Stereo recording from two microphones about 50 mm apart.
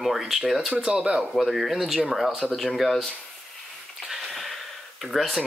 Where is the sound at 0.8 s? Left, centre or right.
Centre.